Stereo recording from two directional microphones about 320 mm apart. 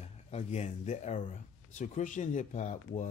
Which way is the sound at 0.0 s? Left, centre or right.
Left.